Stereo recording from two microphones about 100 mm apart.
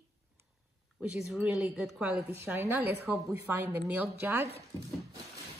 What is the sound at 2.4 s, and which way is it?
Speech, 25° right (ahead or behind).